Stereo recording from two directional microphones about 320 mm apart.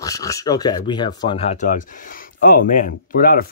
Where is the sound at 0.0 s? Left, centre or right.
Centre.